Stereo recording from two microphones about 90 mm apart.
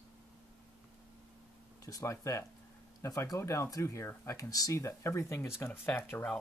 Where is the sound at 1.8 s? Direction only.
35° left (ahead or behind).